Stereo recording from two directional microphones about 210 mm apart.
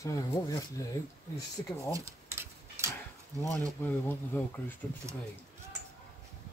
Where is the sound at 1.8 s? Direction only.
15° right (ahead or behind).